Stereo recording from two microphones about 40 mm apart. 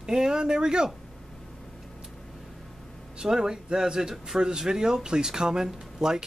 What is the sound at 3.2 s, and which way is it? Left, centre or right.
Speech, centre.